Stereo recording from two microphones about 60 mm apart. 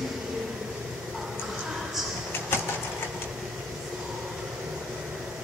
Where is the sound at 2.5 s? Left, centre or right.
Left.